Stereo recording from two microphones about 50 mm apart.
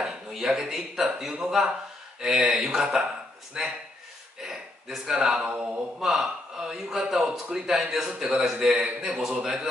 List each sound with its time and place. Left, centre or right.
0.0 s a man's voice: centre
5.0 s a man's voice: centre
5.4 s a sound: right
5.9 s a man's voice: centre